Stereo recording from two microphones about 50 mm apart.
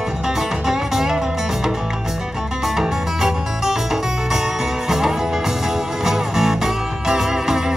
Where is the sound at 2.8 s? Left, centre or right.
Centre.